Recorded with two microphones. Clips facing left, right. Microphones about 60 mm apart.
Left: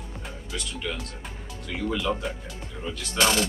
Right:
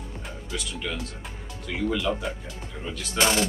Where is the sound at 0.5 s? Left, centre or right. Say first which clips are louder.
Right 1 dB; centre.